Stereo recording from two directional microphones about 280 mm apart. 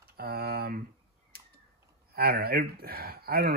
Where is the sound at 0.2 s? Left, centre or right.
Right.